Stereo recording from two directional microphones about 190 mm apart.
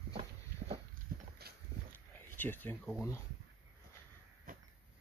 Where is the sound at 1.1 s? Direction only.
50° right (ahead or behind).